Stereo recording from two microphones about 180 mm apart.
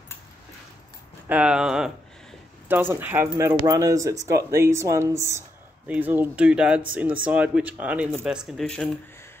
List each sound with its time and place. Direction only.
1.3 s speech: 5° right (ahead or behind)